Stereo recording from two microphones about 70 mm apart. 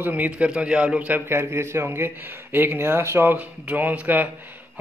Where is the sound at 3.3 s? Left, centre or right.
Right.